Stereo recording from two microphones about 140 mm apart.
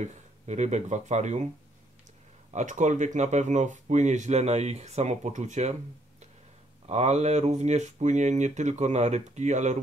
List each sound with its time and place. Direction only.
0.0 s speech: 55° right (ahead or behind)
2.5 s speech: 60° right (ahead or behind)
6.9 s speech: 50° right (ahead or behind)